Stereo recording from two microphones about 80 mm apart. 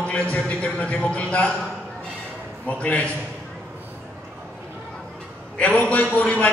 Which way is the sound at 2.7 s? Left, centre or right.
Centre.